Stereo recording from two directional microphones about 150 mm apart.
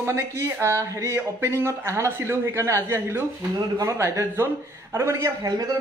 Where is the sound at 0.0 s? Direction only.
20° right (ahead or behind).